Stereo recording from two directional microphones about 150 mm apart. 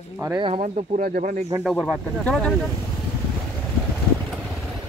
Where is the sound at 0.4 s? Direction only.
45° right (ahead or behind).